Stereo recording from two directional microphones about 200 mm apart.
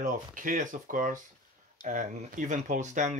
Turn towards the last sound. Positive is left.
turn(degrees=-40)  # may be behind; listen again after turning